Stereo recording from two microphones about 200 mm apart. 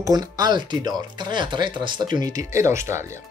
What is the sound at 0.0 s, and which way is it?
Speech, 20° right (ahead or behind).